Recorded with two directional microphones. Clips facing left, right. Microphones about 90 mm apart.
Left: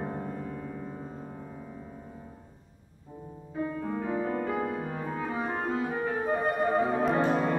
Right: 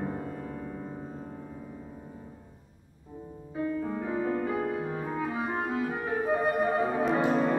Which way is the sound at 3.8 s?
Centre (ahead or behind).